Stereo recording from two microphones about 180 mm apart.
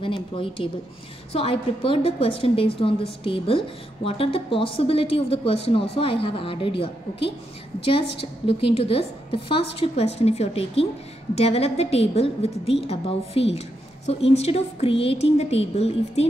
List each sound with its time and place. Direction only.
0.0 s a woman's voice: 30° left (ahead or behind)
8.5 s a woman's voice: 30° left (ahead or behind)